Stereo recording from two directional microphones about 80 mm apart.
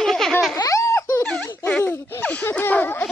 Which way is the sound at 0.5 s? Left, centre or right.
Left.